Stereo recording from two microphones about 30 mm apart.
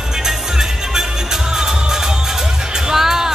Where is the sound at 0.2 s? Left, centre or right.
Centre.